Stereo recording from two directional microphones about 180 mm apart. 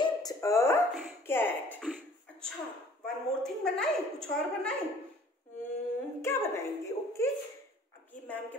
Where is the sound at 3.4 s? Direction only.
5° left (ahead or behind).